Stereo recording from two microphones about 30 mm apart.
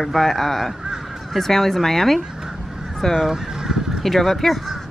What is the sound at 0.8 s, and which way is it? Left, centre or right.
Honk, right.